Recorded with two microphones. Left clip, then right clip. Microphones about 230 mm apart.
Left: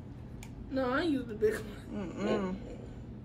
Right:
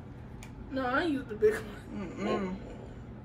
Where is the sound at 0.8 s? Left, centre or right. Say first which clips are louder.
Right 1 dB; centre.